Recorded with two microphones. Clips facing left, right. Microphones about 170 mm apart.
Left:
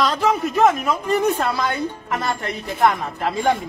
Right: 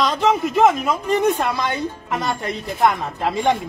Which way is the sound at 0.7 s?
15° right (ahead or behind).